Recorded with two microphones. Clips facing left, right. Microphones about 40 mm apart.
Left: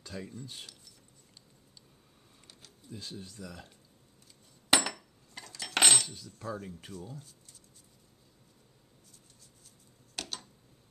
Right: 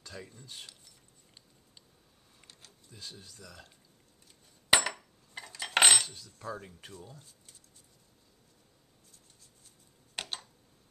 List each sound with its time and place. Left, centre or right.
0.0 s speech: centre
2.9 s speech: centre
4.9 s cutlery: right
6.0 s cutlery: centre
6.4 s speech: centre
6.8 s speech: centre
10.2 s tick-tock: right